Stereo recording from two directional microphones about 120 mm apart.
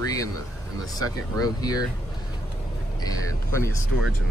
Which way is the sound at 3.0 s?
25° left (ahead or behind).